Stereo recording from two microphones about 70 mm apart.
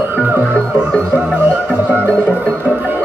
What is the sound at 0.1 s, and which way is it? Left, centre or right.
Music, right.